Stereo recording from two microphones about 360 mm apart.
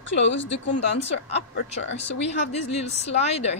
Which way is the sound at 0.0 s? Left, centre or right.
Left.